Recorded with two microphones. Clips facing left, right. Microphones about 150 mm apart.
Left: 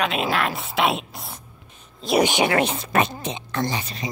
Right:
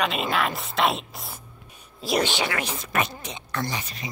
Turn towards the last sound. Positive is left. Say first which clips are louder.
# left 4 dB
turn(degrees=30)  # may be behind; listen again after turning